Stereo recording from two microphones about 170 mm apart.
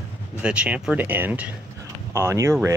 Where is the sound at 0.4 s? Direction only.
5° right (ahead or behind).